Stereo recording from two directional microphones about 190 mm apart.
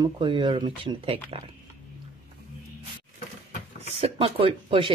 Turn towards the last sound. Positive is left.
turn(degrees=-30)  # may be behind; listen again after turning